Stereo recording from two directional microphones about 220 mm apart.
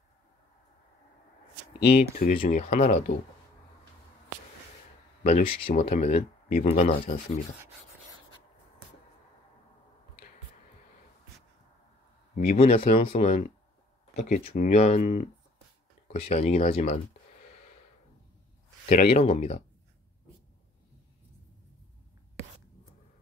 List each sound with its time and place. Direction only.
2.1 s speech: 40° left (ahead or behind)
5.2 s speech: 30° left (ahead or behind)
12.4 s speech: 30° left (ahead or behind)
18.9 s speech: 35° left (ahead or behind)